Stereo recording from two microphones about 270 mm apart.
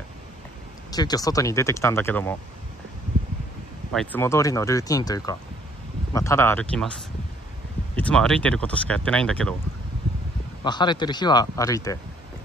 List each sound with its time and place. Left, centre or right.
0.9 s speech: centre
3.9 s speech: centre
7.9 s speech: centre
10.6 s speech: centre